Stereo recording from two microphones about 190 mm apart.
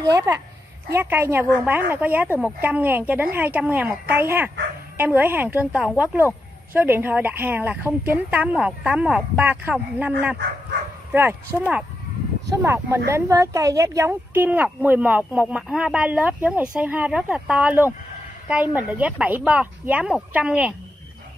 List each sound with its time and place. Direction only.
0.0 s a woman's voice: 15° right (ahead or behind)
12.4 s a woman's voice: 15° right (ahead or behind)